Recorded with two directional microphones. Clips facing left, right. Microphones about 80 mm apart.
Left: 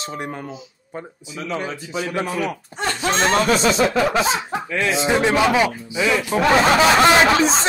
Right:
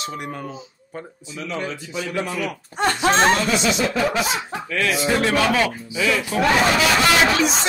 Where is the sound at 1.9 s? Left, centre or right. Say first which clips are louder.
Left 3 dB; left.